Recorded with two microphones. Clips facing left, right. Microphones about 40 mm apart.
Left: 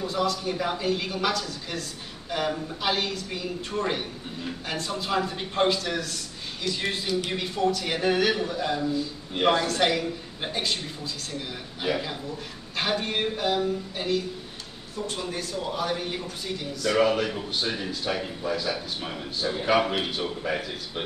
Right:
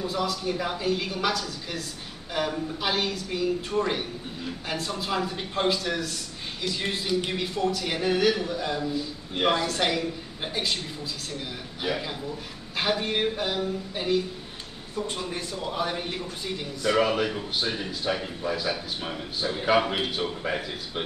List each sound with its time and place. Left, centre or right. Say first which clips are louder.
0.0 s a man's voice: left 1 dB; centre
11.8 s a man's voice: left 1 dB; centre
17.0 s a man's voice: left 1 dB; centre